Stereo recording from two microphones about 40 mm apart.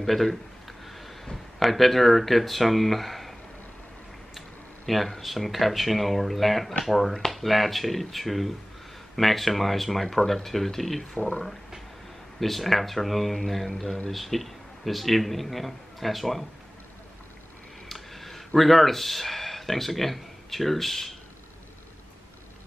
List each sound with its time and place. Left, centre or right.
0.0 s a man's voice: centre
0.8 s a sound: centre
1.2 s speech: centre
4.8 s a man's voice: centre
11.1 s speech: left
12.4 s a man's voice: centre
17.8 s a sound: centre